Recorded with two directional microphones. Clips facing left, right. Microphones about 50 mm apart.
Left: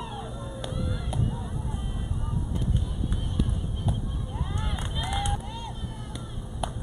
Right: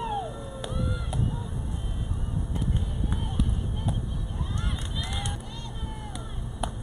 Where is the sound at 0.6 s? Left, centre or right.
Centre.